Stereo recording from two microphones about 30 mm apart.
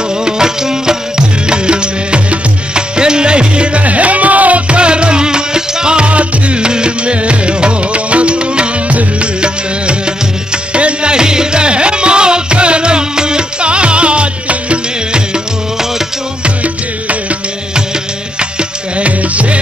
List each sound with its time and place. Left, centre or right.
0.2 s music: centre; by 3.8 s right
3.8 s music: right
6.0 s music: right
8.8 s music: right
9.4 s music: right
16.4 s music: right
18.4 s music: right
19.0 s music: right